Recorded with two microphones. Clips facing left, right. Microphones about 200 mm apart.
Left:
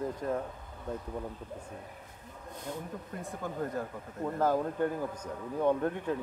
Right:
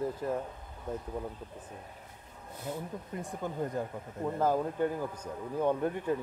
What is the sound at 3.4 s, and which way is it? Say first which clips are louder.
A man's voice: right 1 dB; 20° right (ahead or behind).